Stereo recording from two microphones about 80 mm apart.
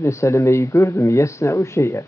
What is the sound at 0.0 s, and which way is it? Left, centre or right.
Speech, left.